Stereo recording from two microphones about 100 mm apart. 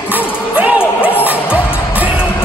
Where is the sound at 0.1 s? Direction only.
15° right (ahead or behind).